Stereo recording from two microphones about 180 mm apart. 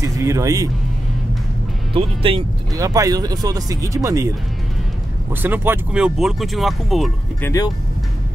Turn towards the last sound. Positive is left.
turn(degrees=20)  # may be behind; listen again after turning